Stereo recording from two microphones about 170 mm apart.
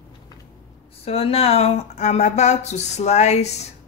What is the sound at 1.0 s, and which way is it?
Speech, 35° left (ahead or behind).